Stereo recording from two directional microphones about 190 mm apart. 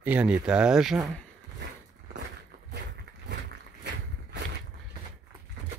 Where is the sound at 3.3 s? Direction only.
65° right (ahead or behind).